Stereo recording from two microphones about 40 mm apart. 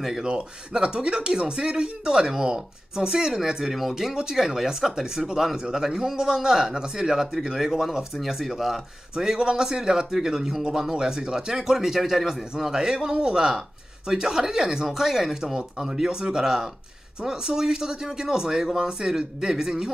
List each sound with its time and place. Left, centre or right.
0.2 s speech: centre